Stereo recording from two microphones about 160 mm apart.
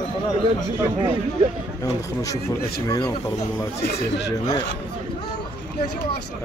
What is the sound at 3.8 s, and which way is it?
Speech, 90° left.